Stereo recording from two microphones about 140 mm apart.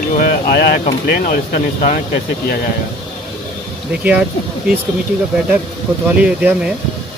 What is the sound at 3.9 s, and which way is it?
Speech, 10° right (ahead or behind).